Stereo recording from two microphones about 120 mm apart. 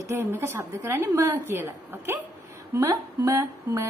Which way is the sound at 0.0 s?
20° right (ahead or behind).